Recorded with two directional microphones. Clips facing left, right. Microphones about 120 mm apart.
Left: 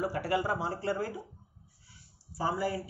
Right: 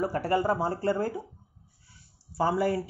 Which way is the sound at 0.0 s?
45° right (ahead or behind).